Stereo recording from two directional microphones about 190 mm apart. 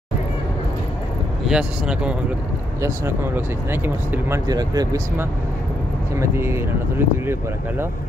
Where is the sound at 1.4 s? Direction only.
5° right (ahead or behind).